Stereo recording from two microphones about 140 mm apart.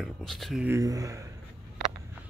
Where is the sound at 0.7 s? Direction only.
25° right (ahead or behind).